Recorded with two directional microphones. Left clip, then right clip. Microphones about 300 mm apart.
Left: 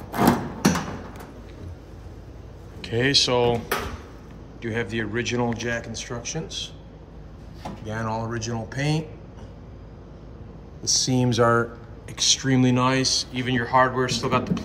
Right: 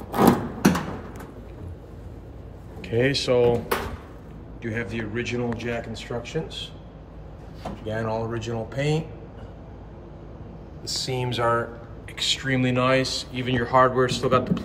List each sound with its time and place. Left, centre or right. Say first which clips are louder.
0.1 s a sound: right 2 dB; centre
2.8 s speech: left 3 dB; centre
7.9 s speech: right 1 dB; left
10.8 s speech: left 5 dB; centre